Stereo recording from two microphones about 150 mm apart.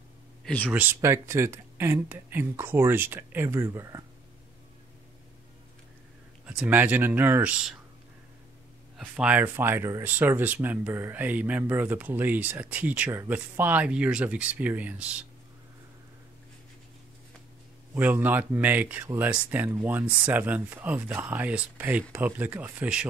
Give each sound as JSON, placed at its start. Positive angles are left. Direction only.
{"t": 0.7, "sound": "speech", "side_deg": -10}
{"t": 6.4, "sound": "speech", "side_deg": -5}
{"t": 8.9, "sound": "speech", "side_deg": -10}
{"t": 17.9, "sound": "speech", "side_deg": -10}